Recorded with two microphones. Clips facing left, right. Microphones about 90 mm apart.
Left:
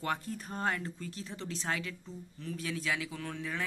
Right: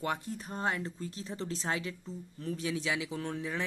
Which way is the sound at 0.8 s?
30° right (ahead or behind).